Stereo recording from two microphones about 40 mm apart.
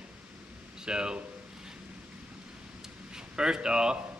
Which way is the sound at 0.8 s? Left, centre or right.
Right.